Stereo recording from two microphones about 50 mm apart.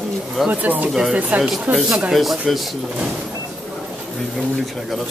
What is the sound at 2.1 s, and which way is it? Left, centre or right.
Speech, centre.